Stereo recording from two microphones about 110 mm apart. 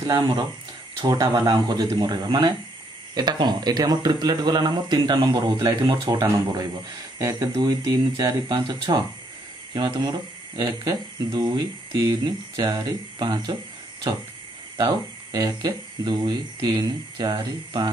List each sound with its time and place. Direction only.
0.0 s speech: 40° right (ahead or behind)
15.3 s speech: 35° right (ahead or behind)